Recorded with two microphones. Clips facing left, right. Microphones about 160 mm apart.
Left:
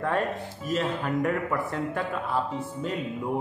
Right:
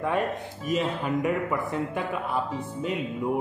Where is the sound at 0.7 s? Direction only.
10° right (ahead or behind).